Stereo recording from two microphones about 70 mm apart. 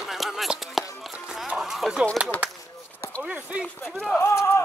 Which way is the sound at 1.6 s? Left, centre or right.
Centre.